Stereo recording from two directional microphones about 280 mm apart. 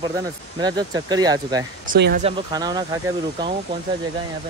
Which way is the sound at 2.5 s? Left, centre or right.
Centre.